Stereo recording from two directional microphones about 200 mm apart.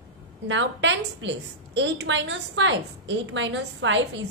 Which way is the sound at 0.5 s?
65° right (ahead or behind).